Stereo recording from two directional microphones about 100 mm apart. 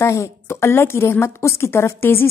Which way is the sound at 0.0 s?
30° left (ahead or behind).